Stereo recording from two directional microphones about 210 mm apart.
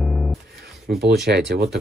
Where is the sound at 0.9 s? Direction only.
50° right (ahead or behind).